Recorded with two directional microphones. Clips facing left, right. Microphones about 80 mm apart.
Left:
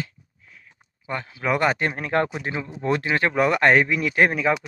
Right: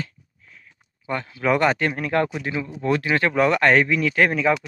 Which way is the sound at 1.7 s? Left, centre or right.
Left.